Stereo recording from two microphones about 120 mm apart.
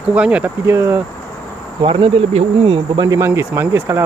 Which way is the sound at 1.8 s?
45° right (ahead or behind).